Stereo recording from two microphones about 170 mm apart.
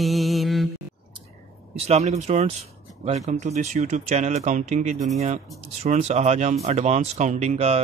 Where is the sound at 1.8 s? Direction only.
40° right (ahead or behind).